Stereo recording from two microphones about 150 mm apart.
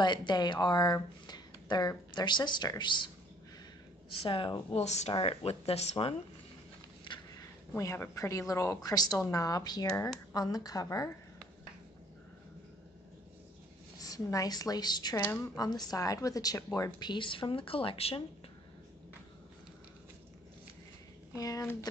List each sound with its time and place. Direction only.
0.0 s speech: 30° left (ahead or behind)
4.2 s speech: 35° left (ahead or behind)
4.7 s speech: 50° left (ahead or behind)
7.1 s a woman's voice: 20° left (ahead or behind)
13.9 s a woman's voice: 25° left (ahead or behind); by 18.2 s 40° left (ahead or behind)
21.4 s a woman's voice: 25° left (ahead or behind)